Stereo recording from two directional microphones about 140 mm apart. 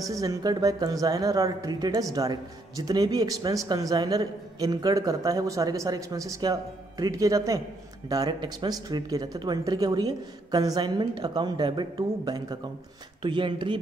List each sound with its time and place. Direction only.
0.0 s speech: 25° right (ahead or behind)